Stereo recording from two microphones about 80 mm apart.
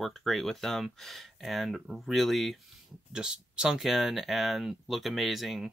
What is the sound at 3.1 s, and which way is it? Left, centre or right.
Speech, centre.